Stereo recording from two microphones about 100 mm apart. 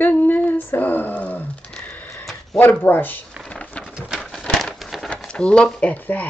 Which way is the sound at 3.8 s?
5° right (ahead or behind).